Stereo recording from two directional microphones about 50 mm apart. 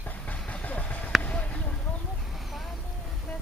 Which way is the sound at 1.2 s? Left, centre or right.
Left.